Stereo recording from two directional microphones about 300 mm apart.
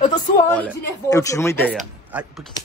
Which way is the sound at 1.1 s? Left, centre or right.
Centre.